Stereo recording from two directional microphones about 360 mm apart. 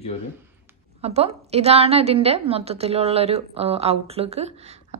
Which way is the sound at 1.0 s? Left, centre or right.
Centre.